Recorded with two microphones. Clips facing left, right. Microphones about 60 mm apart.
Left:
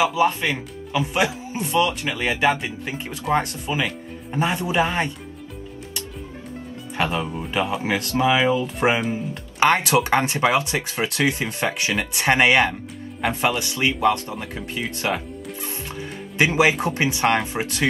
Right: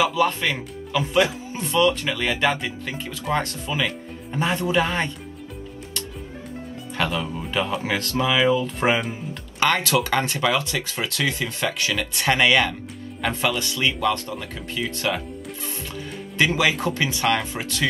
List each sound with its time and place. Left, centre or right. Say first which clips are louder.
0.0 s speech: left 1 dB; centre
7.0 s speech: left 1 dB; left
7.3 s speech: left 1 dB; centre
14.5 s music: right 1 dB; left
16.8 s speech: left 2 dB; left